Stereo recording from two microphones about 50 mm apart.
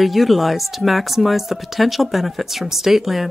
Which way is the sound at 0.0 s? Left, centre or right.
Centre.